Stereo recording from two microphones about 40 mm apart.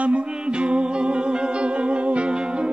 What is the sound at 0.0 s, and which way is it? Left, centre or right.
Music, right.